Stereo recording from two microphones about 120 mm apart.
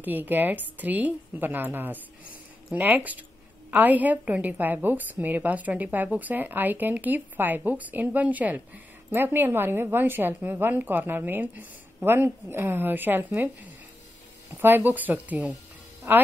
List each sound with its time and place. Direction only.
0.0 s speech: 15° right (ahead or behind)
14.6 s speech: 15° right (ahead or behind)